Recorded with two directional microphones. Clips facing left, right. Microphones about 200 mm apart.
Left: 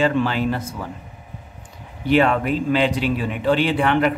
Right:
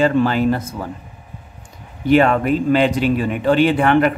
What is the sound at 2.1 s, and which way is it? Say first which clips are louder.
A man's voice: right 3 dB; 45° right (ahead or behind).